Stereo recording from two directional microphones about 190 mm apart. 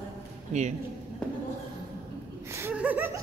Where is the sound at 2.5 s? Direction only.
15° right (ahead or behind).